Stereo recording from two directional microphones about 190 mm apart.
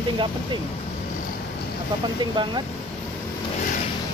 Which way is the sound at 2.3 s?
25° right (ahead or behind).